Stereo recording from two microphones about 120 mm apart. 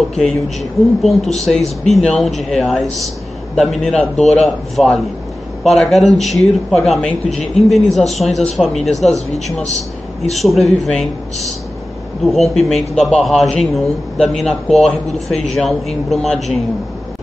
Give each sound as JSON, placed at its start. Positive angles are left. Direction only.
{"t": 0.2, "sound": "a man's voice", "side_deg": 0}
{"t": 9.0, "sound": "a man's voice", "side_deg": 70}
{"t": 10.3, "sound": "a man's voice", "side_deg": 0}
{"t": 12.3, "sound": "a man's voice", "side_deg": 0}